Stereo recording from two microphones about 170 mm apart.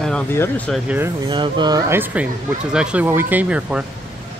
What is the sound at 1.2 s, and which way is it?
Speech, 25° right (ahead or behind).